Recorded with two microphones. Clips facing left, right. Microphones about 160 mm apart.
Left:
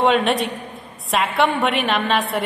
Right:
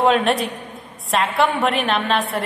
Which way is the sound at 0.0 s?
Centre (ahead or behind).